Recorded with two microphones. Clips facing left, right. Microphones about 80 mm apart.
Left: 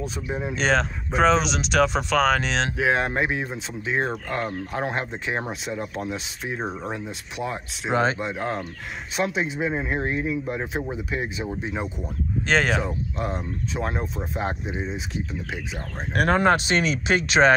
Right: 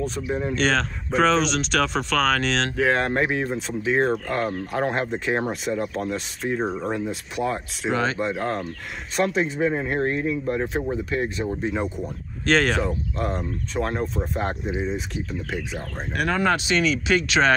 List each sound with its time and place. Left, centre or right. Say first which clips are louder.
0.0 s speech: right 3 dB; centre
7.9 s speech: left 2 dB; left
8.2 s speech: right 2 dB; centre
16.2 s speech: left 3 dB; left